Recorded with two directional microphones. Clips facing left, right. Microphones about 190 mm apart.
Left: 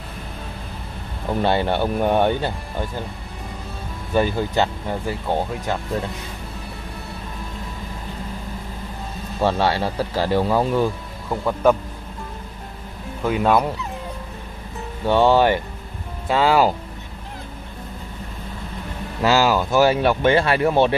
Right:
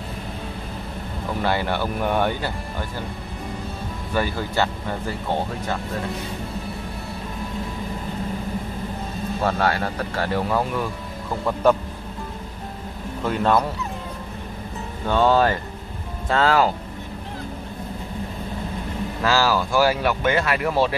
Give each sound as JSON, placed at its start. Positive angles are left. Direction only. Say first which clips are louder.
{"t": 1.4, "sound": "speech", "louder": "left 4 dB", "side_deg": 25}
{"t": 4.1, "sound": "speech", "louder": "left 5 dB", "side_deg": 20}
{"t": 9.4, "sound": "speech", "louder": "left 3 dB", "side_deg": 25}
{"t": 13.2, "sound": "speech", "louder": "left 2 dB", "side_deg": 5}
{"t": 15.0, "sound": "speech", "louder": "left 3 dB", "side_deg": 15}
{"t": 19.2, "sound": "speech", "louder": "left 3 dB", "side_deg": 20}